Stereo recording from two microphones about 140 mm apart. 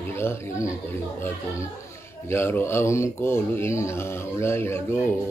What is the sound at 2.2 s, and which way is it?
A man's voice, 15° left (ahead or behind).